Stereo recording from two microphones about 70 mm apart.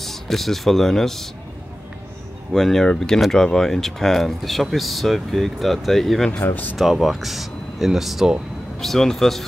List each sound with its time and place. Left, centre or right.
0.0 s speech: centre
2.5 s speech: centre
6.3 s speech: left
6.8 s speech: centre